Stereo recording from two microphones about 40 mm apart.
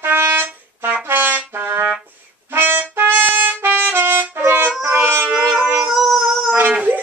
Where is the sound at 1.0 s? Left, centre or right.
Right.